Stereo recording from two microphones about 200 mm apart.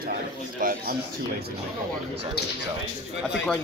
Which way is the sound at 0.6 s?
45° right (ahead or behind).